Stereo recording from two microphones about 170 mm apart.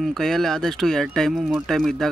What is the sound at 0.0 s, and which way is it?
Speech, centre (ahead or behind).